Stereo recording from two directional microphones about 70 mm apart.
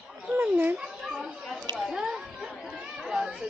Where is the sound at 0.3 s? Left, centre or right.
Right.